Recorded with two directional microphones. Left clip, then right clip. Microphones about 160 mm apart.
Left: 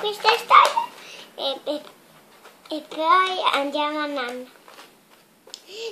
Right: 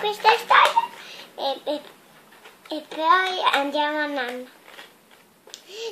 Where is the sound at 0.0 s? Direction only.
5° left (ahead or behind).